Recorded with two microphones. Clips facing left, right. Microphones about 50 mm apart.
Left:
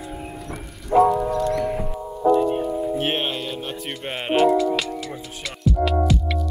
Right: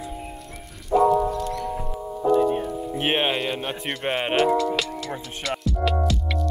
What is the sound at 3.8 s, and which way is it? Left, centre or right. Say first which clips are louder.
Speech: right 3 dB; centre.